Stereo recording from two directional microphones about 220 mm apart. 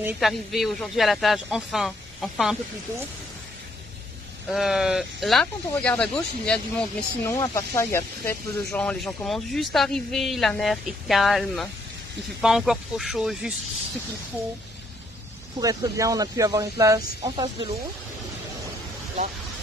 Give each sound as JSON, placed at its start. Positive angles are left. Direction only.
{"t": 0.0, "sound": "speech", "side_deg": 0}
{"t": 4.5, "sound": "speech", "side_deg": 0}
{"t": 15.6, "sound": "speech", "side_deg": -15}